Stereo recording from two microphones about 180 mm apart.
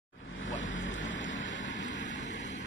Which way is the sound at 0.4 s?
90° left.